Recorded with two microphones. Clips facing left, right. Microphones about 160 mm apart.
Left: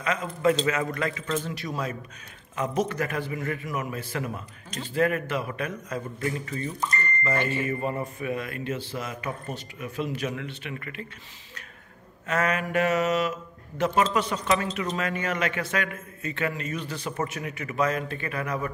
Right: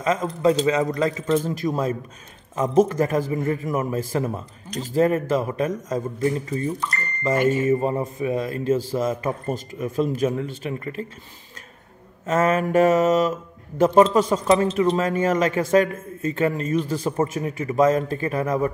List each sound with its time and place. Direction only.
0.0 s speech: 40° right (ahead or behind)
0.7 s a man's voice: 20° right (ahead or behind)
1.4 s speech: 45° right (ahead or behind)
6.2 s a man's voice: 30° right (ahead or behind)
12.3 s speech: 40° right (ahead or behind)
14.5 s speech: 30° right (ahead or behind)